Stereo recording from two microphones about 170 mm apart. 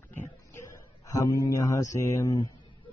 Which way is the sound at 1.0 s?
20° left (ahead or behind).